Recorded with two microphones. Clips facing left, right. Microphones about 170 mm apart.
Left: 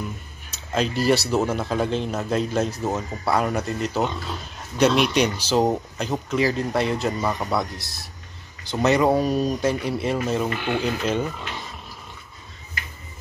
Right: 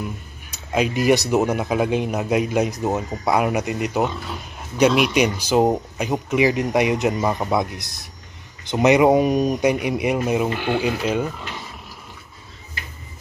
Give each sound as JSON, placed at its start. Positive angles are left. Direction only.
{"t": 0.0, "sound": "speech", "side_deg": -10}